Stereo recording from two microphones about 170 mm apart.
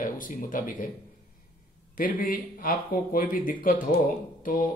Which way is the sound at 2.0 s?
55° left (ahead or behind).